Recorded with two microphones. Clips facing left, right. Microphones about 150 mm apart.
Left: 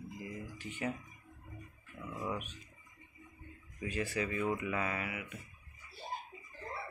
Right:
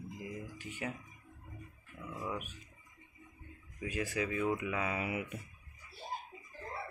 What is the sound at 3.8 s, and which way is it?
Speech, 10° right (ahead or behind).